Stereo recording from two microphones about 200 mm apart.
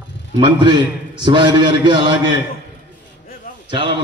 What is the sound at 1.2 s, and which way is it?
Speech, 25° right (ahead or behind).